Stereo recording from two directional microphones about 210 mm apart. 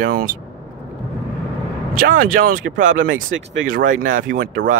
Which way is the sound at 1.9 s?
40° right (ahead or behind).